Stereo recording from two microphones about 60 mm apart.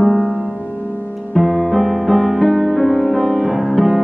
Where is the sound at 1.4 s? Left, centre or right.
Centre.